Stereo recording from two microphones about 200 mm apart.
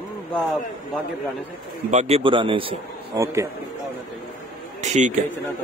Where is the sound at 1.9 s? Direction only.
35° right (ahead or behind).